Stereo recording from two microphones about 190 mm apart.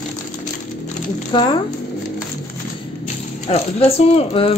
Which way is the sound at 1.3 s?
25° left (ahead or behind).